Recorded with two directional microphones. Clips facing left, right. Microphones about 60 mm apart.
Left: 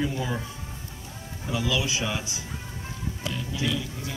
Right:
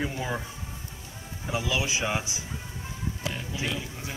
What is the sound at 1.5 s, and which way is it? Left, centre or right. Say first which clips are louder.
Speech: left 1 dB; right.